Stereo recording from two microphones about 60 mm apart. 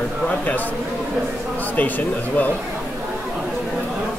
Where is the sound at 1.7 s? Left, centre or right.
Left.